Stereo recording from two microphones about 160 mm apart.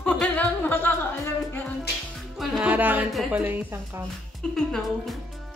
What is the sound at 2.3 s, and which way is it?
Speech, 5° right (ahead or behind).